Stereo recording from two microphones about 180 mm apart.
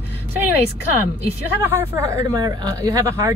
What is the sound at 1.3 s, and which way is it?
A woman's voice, 10° right (ahead or behind).